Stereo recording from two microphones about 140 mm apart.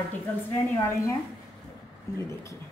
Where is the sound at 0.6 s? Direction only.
20° left (ahead or behind).